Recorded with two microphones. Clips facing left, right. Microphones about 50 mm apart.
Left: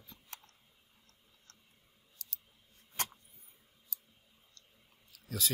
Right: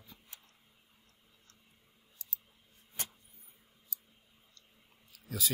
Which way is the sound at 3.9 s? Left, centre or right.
Left.